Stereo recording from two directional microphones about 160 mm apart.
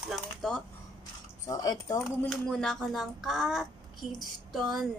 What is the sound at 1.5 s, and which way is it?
Speech, 20° left (ahead or behind).